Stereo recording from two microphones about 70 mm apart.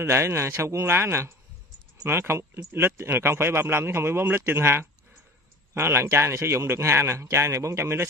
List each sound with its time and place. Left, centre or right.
0.0 s speech: right